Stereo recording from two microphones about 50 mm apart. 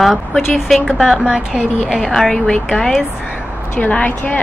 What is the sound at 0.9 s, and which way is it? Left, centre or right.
Speech, centre.